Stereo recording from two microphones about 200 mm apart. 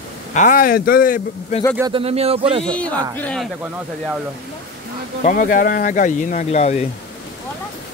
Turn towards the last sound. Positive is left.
turn(degrees=35)  # may be behind; listen again after turning